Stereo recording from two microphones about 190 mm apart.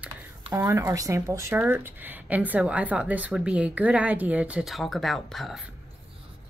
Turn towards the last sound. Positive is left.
turn(degrees=0)  # may be behind; listen again after turning